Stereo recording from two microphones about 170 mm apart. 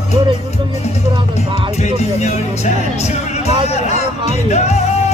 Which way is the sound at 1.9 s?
40° left (ahead or behind).